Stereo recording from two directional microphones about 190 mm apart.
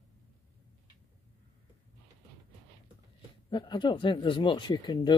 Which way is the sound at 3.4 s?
25° left (ahead or behind).